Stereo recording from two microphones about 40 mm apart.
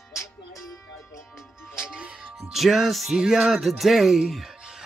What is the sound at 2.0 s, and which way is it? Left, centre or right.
Music, right.